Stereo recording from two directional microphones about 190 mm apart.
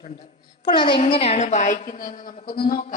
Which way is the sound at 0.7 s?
25° left (ahead or behind).